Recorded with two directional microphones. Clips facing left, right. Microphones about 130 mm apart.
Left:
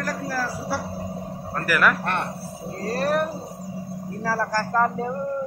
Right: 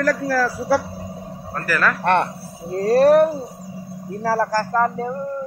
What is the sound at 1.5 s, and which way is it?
Speech, 10° left (ahead or behind).